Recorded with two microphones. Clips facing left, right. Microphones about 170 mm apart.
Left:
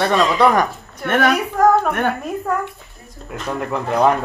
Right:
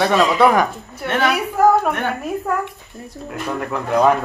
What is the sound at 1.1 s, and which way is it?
Speech, 50° left (ahead or behind).